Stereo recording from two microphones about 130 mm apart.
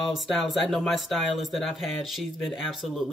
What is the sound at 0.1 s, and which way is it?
Speech, centre (ahead or behind).